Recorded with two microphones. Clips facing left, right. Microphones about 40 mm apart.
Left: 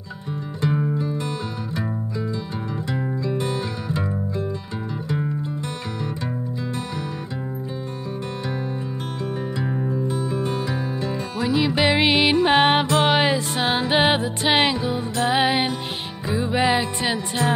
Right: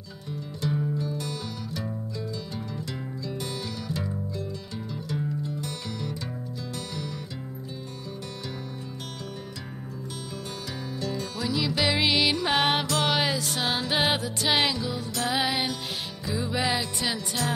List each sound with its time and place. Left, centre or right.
0.9 s music: left
2.9 s music: left
9.2 s music: left